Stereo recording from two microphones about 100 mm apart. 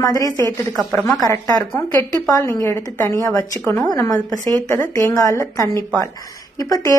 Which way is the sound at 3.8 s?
35° left (ahead or behind).